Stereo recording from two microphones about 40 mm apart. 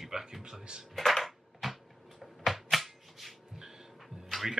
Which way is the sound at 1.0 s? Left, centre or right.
Centre.